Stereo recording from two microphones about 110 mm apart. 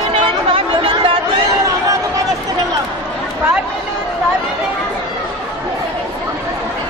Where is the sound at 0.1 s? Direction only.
55° right (ahead or behind).